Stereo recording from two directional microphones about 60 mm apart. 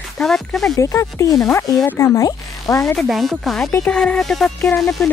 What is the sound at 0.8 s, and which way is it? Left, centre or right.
Speech, left.